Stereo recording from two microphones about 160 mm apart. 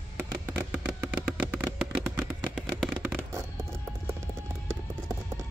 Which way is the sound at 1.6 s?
5° right (ahead or behind).